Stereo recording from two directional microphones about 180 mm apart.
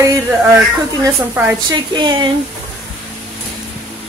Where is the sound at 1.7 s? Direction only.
25° right (ahead or behind).